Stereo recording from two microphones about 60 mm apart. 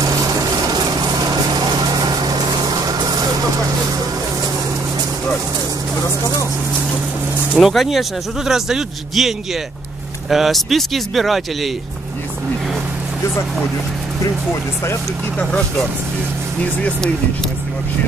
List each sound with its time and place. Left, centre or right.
1.7 s vehicle: right
7.5 s a man's voice: centre
10.3 s speech: centre